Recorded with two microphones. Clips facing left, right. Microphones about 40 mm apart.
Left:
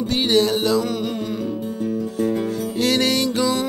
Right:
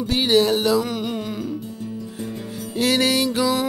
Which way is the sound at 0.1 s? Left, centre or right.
Centre.